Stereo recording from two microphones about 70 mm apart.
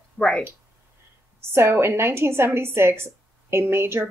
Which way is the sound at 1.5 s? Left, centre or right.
Right.